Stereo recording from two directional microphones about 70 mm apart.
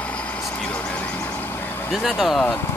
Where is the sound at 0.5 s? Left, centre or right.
Centre.